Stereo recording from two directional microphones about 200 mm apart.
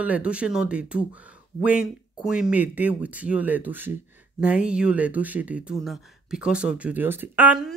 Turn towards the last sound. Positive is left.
turn(degrees=-5)  # may be behind; listen again after turning